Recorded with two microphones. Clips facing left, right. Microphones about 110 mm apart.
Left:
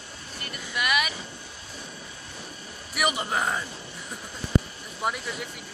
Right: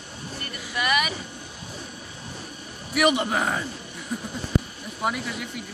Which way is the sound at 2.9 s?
Centre (ahead or behind).